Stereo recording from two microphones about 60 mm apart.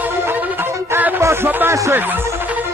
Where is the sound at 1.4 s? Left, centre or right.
Right.